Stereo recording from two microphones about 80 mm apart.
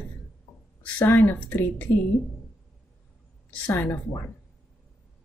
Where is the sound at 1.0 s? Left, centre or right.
Left.